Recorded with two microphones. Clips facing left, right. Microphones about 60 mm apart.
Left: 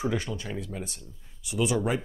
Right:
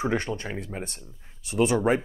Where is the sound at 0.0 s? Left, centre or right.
Right.